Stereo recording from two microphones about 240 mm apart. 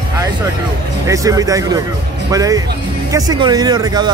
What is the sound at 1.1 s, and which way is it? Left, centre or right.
Speech, centre.